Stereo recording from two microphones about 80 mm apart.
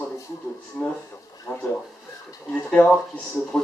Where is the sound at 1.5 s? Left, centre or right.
Left.